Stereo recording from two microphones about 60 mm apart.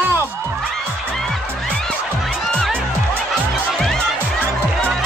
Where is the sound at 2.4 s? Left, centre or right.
Centre.